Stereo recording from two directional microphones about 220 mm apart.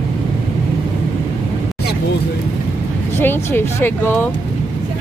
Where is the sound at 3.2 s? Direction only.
10° left (ahead or behind).